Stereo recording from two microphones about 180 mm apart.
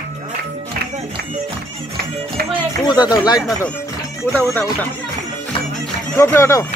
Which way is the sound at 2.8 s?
20° left (ahead or behind).